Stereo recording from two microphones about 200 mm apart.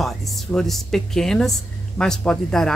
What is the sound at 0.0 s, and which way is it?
Speech, centre (ahead or behind).